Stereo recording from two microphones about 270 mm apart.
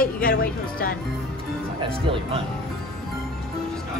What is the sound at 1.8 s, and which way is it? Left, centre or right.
Speech, centre.